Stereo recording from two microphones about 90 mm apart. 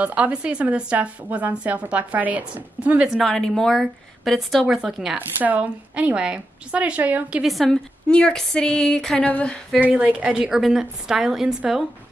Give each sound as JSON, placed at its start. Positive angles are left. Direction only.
{"t": 0.0, "sound": "a woman's voice", "side_deg": -15}
{"t": 3.2, "sound": "a woman's voice", "side_deg": 5}
{"t": 5.1, "sound": "a woman's voice", "side_deg": -15}
{"t": 7.4, "sound": "a woman's voice", "side_deg": 5}
{"t": 9.8, "sound": "a woman's voice", "side_deg": -15}